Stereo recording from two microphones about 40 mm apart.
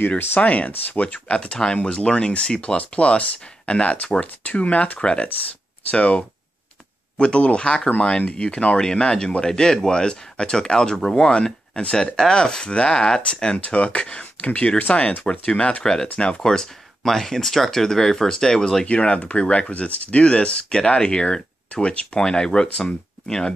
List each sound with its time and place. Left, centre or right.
0.4 s speech: left
1.3 s speech: left
4.9 s speech: left
8.7 s speech: centre
13.6 s speech: left
15.8 s speech: centre
18.9 s speech: left
19.7 s speech: left; by 23.5 s centre